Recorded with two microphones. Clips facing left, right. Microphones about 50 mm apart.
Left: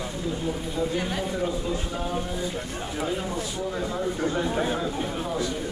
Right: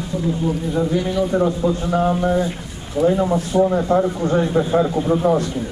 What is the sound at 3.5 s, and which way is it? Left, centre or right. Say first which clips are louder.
A man's voice: right 13 dB; right.